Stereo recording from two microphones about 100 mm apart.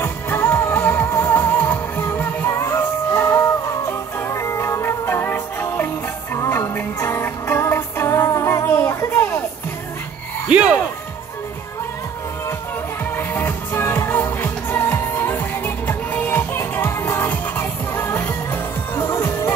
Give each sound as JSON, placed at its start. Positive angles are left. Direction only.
{"t": 0.0, "sound": "music", "side_deg": 25}
{"t": 10.5, "sound": "music", "side_deg": -10}
{"t": 13.1, "sound": "music", "side_deg": 15}